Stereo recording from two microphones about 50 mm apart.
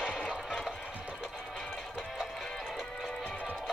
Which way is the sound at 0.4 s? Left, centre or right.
Centre.